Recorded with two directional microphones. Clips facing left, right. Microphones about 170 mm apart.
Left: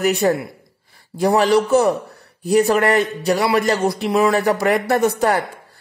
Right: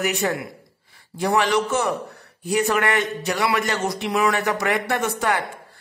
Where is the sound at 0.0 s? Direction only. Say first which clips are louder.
Left 6 dB; 35° left (ahead or behind).